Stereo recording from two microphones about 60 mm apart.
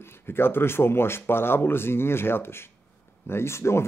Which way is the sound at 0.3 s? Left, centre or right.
Left.